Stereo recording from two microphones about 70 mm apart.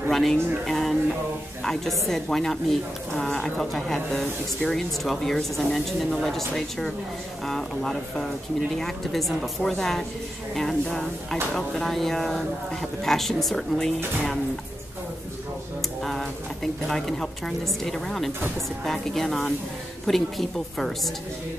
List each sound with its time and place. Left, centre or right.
0.1 s speech: centre
16.0 s a sound: centre
16.8 s speech: centre